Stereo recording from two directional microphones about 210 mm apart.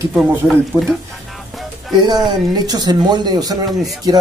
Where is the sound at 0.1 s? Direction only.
Centre (ahead or behind).